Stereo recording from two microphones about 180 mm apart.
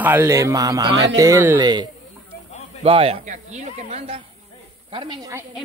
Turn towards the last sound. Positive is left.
turn(degrees=-30)  # may be behind; listen again after turning